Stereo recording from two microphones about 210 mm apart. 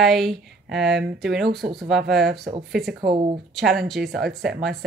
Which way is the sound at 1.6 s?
35° right (ahead or behind).